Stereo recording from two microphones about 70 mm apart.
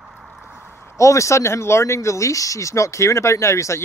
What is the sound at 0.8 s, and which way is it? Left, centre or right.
A man's voice, left.